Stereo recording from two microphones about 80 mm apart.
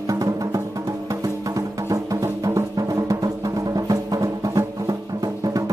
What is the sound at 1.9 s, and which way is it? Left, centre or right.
Music, right.